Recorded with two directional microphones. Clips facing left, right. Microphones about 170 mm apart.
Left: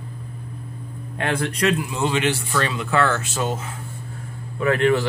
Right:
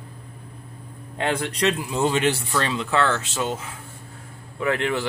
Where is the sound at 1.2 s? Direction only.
20° right (ahead or behind).